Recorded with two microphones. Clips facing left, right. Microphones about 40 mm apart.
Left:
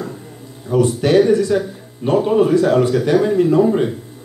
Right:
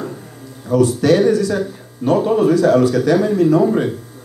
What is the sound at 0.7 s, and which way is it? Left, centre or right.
Speech, left.